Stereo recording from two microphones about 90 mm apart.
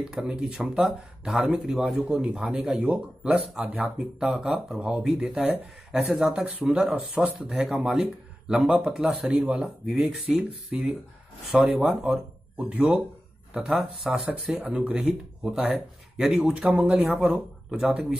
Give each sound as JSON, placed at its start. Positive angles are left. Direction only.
{"t": 0.1, "sound": "speech", "side_deg": -10}
{"t": 9.3, "sound": "speech", "side_deg": -15}
{"t": 9.6, "sound": "speech", "side_deg": -5}
{"t": 14.2, "sound": "speech", "side_deg": -15}